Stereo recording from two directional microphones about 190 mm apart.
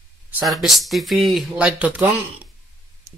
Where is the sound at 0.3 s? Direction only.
Centre (ahead or behind).